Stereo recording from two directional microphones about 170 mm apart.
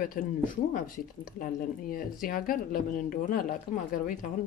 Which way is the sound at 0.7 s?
55° left (ahead or behind).